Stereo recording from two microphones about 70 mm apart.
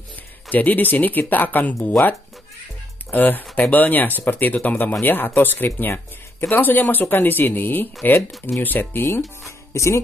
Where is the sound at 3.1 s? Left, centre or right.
Left.